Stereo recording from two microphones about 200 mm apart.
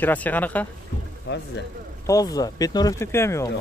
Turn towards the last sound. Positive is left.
turn(degrees=15)  # may be behind; listen again after turning